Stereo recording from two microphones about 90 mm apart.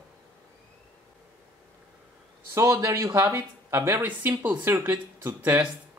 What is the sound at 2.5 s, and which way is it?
Speech, 35° right (ahead or behind).